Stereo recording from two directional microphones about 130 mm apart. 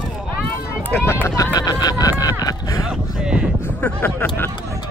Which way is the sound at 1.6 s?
30° left (ahead or behind).